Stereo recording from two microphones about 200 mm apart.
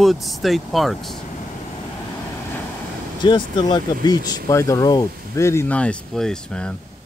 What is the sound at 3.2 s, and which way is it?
Speech, 25° left (ahead or behind).